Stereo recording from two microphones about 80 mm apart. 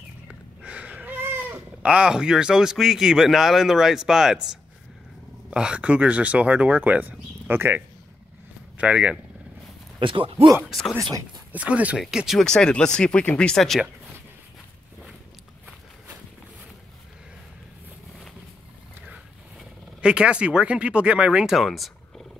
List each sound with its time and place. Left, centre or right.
0.3 s speech: centre
8.7 s speech: centre
9.9 s speech: right
11.5 s speech: centre
12.0 s speech: centre
12.4 s speech: centre
20.0 s speech: centre